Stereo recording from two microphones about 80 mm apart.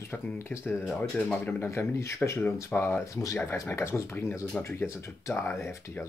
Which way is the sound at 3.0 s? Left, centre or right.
Left.